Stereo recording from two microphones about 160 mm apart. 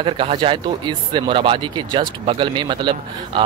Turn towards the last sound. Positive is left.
turn(degrees=-30)  # may be behind; listen again after turning